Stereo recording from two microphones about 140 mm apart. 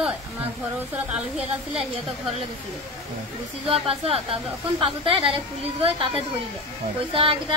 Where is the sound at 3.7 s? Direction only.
45° right (ahead or behind).